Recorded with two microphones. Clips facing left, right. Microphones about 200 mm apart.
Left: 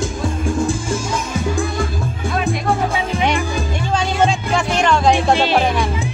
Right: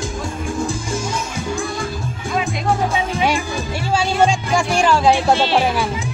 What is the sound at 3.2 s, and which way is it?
Music, 10° right (ahead or behind).